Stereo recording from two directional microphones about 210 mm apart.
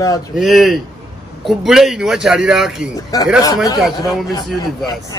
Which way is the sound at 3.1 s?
15° left (ahead or behind).